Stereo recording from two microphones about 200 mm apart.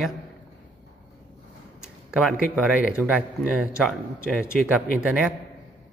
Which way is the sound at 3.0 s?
5° right (ahead or behind).